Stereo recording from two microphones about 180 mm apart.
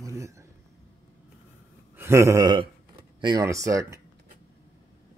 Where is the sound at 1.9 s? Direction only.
15° right (ahead or behind).